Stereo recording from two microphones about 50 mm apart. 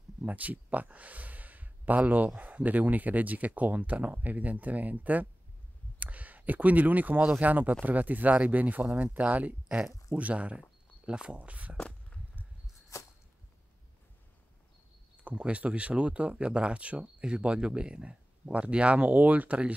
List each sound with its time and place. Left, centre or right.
0.2 s speech: right
11.3 s speech: right
12.9 s a sound: left
15.2 s speech: right